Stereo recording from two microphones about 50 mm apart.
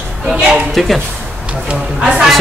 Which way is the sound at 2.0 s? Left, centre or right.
Centre.